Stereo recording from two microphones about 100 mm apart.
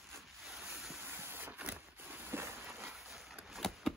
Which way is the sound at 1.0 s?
20° right (ahead or behind).